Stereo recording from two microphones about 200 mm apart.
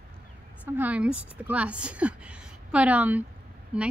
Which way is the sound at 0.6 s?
10° right (ahead or behind).